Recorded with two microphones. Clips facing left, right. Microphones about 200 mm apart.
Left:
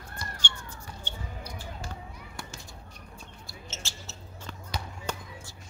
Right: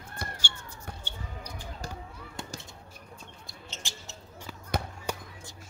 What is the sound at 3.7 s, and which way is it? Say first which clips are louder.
Basketball bounce: even; 15° right (ahead or behind).